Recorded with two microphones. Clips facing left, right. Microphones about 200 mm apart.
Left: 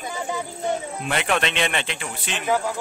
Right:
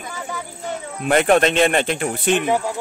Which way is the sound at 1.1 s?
45° right (ahead or behind).